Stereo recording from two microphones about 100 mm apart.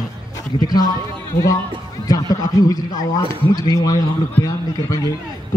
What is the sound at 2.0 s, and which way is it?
A man's voice, 40° left (ahead or behind).